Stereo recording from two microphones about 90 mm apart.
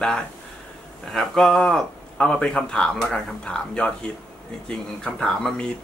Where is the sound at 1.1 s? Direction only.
5° left (ahead or behind).